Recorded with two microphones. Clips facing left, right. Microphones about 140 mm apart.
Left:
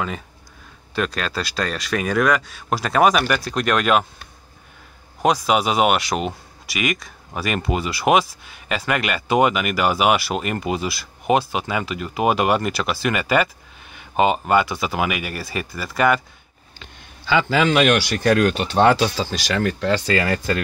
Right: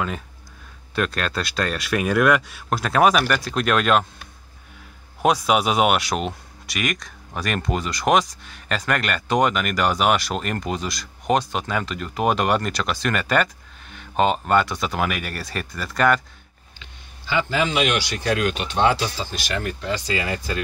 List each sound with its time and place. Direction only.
0.9 s speech: centre (ahead or behind)
17.3 s speech: 90° left; by 18.4 s 55° left (ahead or behind)
18.4 s speech: 35° left (ahead or behind)
18.9 s speech: 90° left; by 20.5 s 65° left (ahead or behind)